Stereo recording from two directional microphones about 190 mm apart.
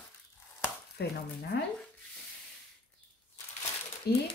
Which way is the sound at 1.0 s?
60° left (ahead or behind).